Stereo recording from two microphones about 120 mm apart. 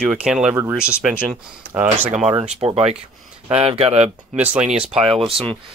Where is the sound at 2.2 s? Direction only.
65° right (ahead or behind).